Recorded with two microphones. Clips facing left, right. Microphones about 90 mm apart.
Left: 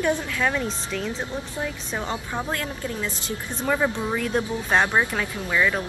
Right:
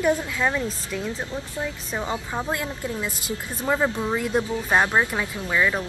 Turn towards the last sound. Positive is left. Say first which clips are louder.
# even
turn(degrees=-10)  # may be behind; listen again after turning